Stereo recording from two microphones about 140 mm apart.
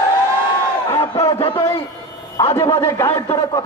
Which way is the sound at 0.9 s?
30° left (ahead or behind).